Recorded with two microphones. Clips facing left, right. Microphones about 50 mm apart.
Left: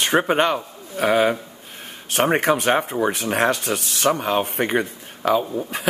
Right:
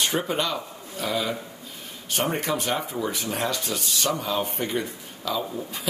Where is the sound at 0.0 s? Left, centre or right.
Left.